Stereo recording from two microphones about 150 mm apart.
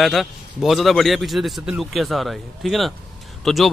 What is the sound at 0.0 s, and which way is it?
Speech, centre (ahead or behind).